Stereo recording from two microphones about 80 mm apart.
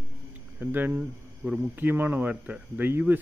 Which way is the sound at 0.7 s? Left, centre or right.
Right.